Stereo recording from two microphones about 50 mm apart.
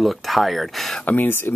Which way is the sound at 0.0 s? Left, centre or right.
Centre.